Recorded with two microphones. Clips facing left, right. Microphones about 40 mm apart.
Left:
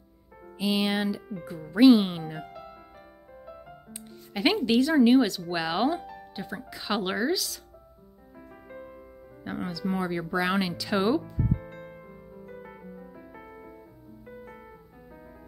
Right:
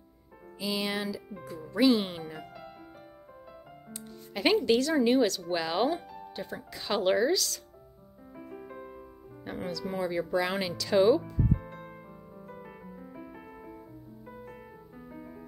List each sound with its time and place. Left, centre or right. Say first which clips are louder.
0.6 s speech: left 5 dB; left
4.3 s speech: even; centre
9.4 s speech: left 2 dB; centre
11.6 s music: left 2 dB; centre